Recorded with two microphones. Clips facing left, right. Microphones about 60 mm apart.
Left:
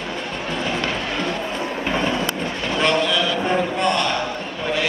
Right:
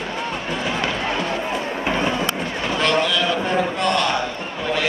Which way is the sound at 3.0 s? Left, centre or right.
Centre.